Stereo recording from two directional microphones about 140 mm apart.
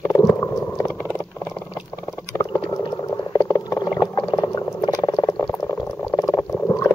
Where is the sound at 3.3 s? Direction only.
20° left (ahead or behind).